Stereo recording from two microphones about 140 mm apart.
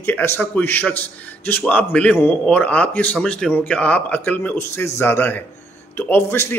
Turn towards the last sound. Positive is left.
turn(degrees=15)  # may be behind; listen again after turning